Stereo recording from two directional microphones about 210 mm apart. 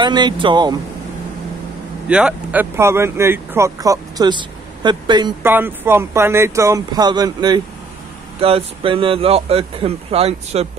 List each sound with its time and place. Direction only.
0.0 s speech: 20° right (ahead or behind)
2.0 s speech: 5° right (ahead or behind); by 5.5 s 20° right (ahead or behind)
5.5 s speech: 10° right (ahead or behind); by 10.7 s 30° right (ahead or behind)